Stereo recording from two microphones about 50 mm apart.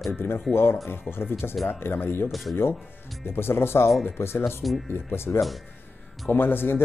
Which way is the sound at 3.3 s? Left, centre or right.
Left.